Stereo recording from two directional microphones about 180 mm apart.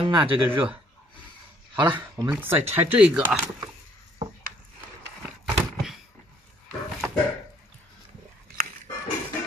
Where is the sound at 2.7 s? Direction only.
10° right (ahead or behind).